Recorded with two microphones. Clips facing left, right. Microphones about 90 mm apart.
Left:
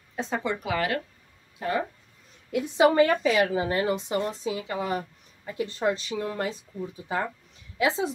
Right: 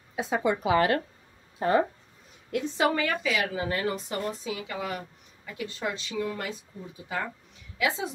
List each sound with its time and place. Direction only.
0.1 s speech: 10° right (ahead or behind); by 1.9 s 30° right (ahead or behind)
2.5 s a woman's voice: 15° left (ahead or behind)
2.9 s a woman's voice: 30° left (ahead or behind)
3.5 s speech: 25° left (ahead or behind)
7.8 s a woman's voice: 30° left (ahead or behind)